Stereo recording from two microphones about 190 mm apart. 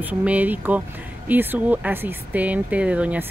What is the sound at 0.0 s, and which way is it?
Speech, 10° right (ahead or behind).